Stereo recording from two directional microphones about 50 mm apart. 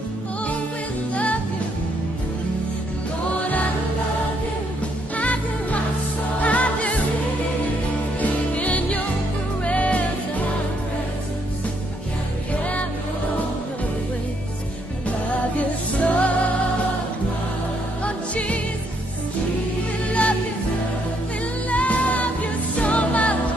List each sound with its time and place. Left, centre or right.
1.1 s music: left
5.1 s music: left
8.2 s music: left
15.0 s music: left
18.0 s music: left
20.1 s music: left
21.6 s music: left